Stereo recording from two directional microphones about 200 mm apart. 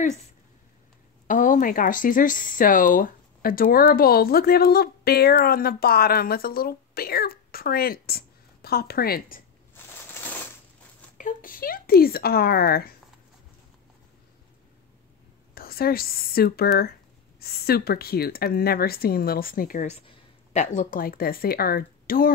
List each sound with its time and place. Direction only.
1.2 s speech: 40° left (ahead or behind)
11.1 s speech: 40° left (ahead or behind)
15.5 s speech: 50° left (ahead or behind)